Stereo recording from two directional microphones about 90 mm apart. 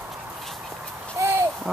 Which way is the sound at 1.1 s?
25° right (ahead or behind).